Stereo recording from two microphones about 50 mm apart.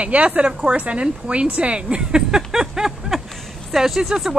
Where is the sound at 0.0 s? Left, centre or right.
Right.